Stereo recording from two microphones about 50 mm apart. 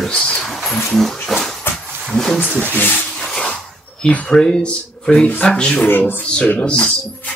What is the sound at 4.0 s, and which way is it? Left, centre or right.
Speech, left.